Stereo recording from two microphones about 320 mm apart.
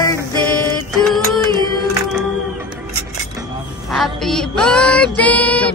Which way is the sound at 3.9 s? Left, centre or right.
Centre.